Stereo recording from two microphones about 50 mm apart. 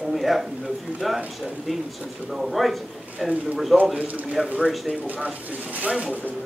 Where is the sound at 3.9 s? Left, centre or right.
Right.